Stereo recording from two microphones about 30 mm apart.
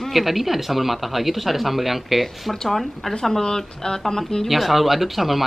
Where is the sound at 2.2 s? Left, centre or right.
Centre.